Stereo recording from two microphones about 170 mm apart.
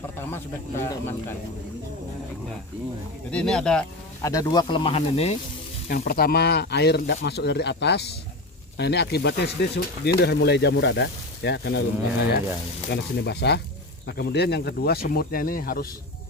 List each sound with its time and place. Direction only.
0.2 s speech: 15° left (ahead or behind)
3.3 s speech: 5° left (ahead or behind)
4.2 s speech: 20° left (ahead or behind); by 5.4 s 35° left (ahead or behind)
5.9 s speech: 60° left (ahead or behind)